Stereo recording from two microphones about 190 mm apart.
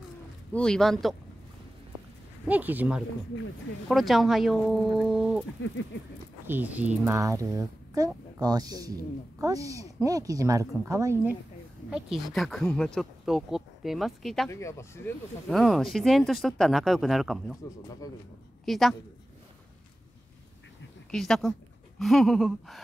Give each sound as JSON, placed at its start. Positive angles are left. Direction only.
{"t": 0.5, "sound": "speech", "side_deg": 5}
{"t": 2.4, "sound": "speech", "side_deg": -10}
{"t": 5.6, "sound": "speech", "side_deg": 75}
{"t": 6.4, "sound": "speech", "side_deg": -10}
{"t": 11.9, "sound": "speech", "side_deg": 0}
{"t": 14.5, "sound": "speech", "side_deg": 15}
{"t": 15.4, "sound": "speech", "side_deg": 0}
{"t": 18.7, "sound": "speech", "side_deg": 0}
{"t": 21.1, "sound": "a woman's voice", "side_deg": 0}